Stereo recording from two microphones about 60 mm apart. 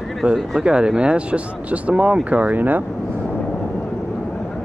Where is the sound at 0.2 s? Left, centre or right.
Centre.